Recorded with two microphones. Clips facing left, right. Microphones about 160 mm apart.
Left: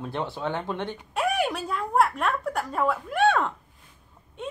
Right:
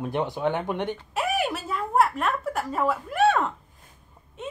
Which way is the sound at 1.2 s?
Centre (ahead or behind).